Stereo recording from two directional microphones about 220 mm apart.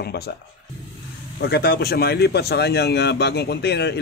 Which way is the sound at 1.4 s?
45° left (ahead or behind).